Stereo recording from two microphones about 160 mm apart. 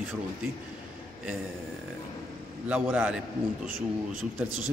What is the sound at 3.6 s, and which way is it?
Speech, 60° right (ahead or behind).